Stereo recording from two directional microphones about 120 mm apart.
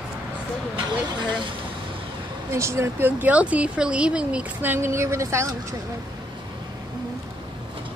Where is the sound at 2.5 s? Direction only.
25° right (ahead or behind).